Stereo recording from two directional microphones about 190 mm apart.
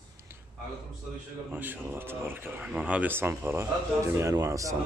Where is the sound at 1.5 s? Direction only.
10° right (ahead or behind).